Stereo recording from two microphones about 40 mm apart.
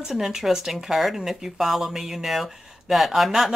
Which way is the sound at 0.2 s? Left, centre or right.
Centre.